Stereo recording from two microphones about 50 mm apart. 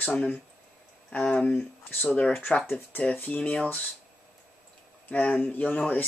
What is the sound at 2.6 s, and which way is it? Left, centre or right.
Speech, left.